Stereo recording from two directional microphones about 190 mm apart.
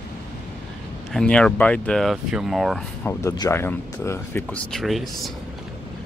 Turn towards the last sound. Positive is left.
turn(degrees=0)  # may be behind; listen again after turning